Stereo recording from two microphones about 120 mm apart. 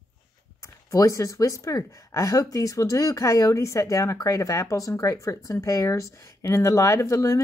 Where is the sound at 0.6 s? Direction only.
25° left (ahead or behind).